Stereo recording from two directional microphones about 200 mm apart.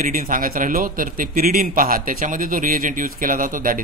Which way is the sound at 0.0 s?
45° right (ahead or behind).